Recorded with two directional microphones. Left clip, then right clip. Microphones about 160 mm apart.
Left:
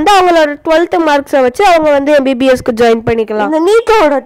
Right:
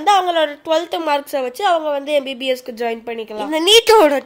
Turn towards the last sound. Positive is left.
turn(degrees=-10)  # may be behind; listen again after turning